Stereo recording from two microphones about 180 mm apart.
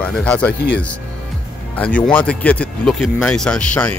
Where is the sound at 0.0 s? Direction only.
5° left (ahead or behind).